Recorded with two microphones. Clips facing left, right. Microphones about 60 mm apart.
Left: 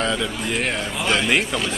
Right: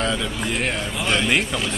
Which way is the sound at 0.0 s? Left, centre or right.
Centre.